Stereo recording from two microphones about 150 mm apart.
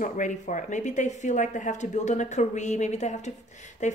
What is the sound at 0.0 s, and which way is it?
A woman's voice, 60° left (ahead or behind).